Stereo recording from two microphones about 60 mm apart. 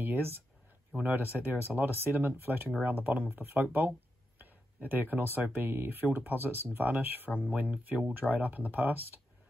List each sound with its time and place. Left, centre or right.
0.0 s speech: right
4.8 s speech: right